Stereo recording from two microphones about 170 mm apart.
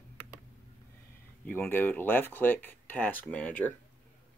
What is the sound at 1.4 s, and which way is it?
Speech, 10° left (ahead or behind).